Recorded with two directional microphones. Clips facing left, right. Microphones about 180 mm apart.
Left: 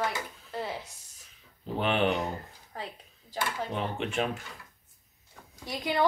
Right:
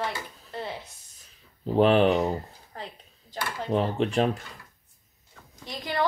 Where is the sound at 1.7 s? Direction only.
35° right (ahead or behind).